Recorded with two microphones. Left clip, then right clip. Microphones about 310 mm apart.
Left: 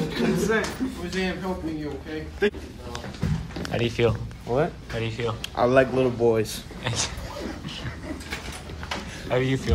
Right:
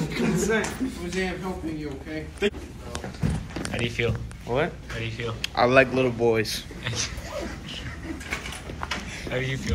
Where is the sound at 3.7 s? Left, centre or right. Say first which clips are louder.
Left 4 dB; centre.